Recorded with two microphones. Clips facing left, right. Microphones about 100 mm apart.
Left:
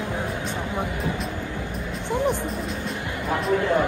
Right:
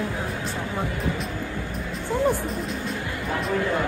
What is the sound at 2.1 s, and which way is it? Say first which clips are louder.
Music: right 1 dB; 20° left (ahead or behind).